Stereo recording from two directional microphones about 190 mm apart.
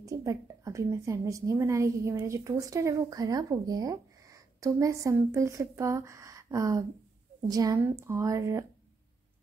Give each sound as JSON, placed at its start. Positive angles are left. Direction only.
{"t": 0.0, "sound": "a woman's voice", "side_deg": -15}